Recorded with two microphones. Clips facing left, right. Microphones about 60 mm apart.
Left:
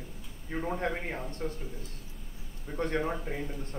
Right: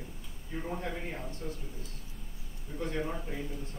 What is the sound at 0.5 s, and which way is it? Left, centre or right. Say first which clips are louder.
Speech: left 4 dB; left.